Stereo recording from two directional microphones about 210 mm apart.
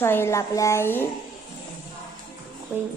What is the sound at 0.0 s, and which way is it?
Speech, 10° left (ahead or behind).